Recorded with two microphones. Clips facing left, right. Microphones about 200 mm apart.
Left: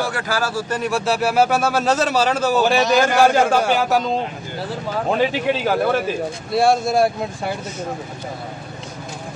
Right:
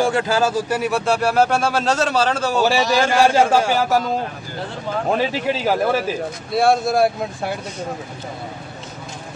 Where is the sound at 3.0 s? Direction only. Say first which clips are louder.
Right 1 dB; 5° right (ahead or behind).